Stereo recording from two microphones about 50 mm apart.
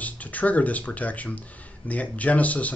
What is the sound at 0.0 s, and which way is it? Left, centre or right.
Speech, left.